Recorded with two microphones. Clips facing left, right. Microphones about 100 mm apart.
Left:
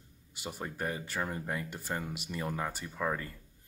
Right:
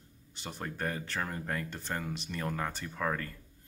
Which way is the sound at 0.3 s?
10° left (ahead or behind).